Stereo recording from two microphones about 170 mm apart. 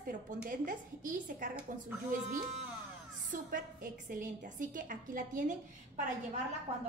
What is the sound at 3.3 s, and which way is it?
A woman's voice, 50° right (ahead or behind).